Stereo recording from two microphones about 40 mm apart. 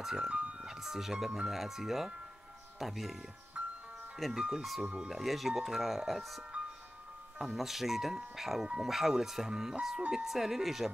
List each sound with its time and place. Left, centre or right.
0.0 s speech: centre
0.3 s music: right
0.6 s speech: centre
3.6 s music: right
4.4 s speech: centre
5.1 s speech: centre